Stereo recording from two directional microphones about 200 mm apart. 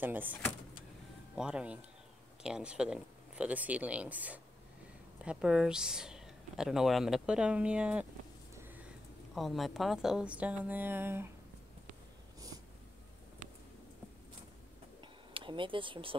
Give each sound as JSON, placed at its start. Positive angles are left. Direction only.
{"t": 0.0, "sound": "speech", "side_deg": -10}
{"t": 9.3, "sound": "speech", "side_deg": 0}
{"t": 15.0, "sound": "a sound", "side_deg": -25}